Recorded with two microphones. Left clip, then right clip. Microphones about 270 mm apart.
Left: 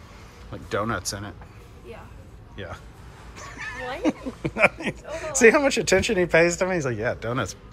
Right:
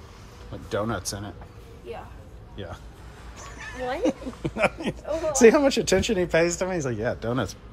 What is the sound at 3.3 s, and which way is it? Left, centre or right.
Dog, centre.